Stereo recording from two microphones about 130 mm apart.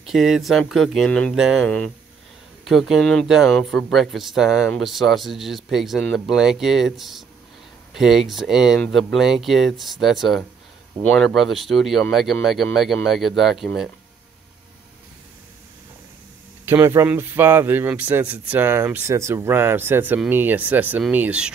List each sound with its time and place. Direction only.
0.0 s speech: centre (ahead or behind)
16.6 s speech: 20° right (ahead or behind)